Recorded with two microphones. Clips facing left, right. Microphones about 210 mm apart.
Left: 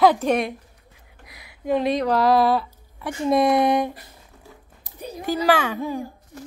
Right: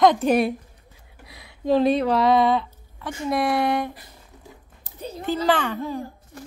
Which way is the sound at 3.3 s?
20° left (ahead or behind).